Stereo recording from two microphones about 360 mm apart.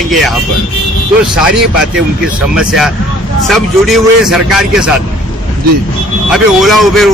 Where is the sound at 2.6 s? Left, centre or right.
Centre.